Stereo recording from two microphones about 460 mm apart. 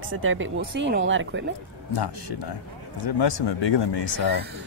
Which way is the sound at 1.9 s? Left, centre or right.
Left.